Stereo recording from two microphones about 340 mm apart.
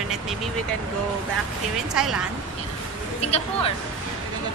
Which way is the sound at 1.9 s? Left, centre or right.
Centre.